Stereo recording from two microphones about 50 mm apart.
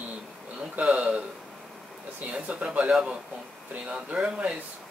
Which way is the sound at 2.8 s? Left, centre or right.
Centre.